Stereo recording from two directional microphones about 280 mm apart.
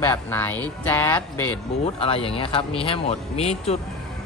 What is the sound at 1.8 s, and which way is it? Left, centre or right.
Speech, centre.